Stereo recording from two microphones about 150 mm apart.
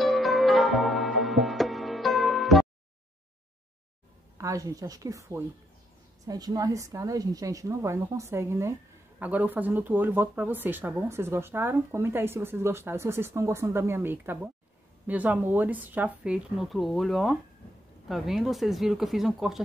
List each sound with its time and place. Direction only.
0.0 s music: centre (ahead or behind)
4.4 s a woman's voice: 20° right (ahead or behind); by 19.6 s centre (ahead or behind)